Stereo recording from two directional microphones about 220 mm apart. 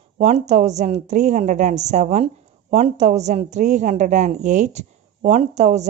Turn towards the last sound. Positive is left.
turn(degrees=-30)  # may be behind; listen again after turning